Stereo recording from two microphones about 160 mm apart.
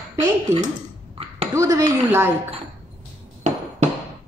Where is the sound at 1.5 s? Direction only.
15° right (ahead or behind).